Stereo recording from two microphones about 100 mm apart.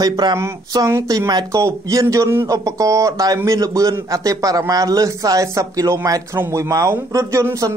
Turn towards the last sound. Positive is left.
turn(degrees=-30)  # may be behind; listen again after turning